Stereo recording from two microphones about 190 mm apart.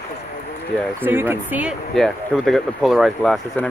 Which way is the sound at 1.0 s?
10° right (ahead or behind).